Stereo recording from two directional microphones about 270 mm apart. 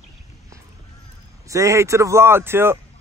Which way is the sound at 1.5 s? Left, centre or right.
Centre.